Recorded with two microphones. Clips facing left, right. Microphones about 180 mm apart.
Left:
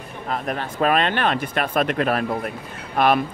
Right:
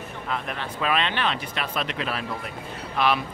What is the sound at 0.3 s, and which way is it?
Speech, 45° left (ahead or behind).